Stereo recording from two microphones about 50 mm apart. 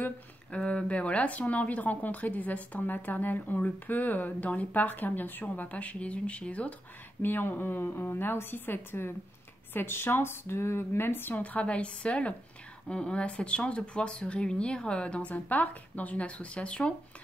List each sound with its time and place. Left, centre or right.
0.5 s speech: left
7.2 s a woman's voice: left
11.4 s speech: left